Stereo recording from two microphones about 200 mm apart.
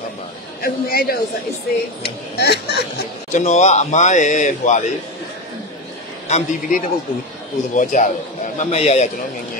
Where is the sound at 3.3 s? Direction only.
35° left (ahead or behind).